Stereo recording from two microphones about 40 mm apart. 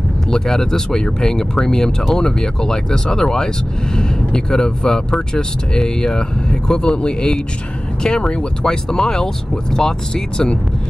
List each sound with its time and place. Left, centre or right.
0.3 s speech: centre